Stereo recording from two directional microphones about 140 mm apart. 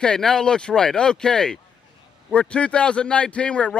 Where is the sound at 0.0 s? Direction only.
5° left (ahead or behind).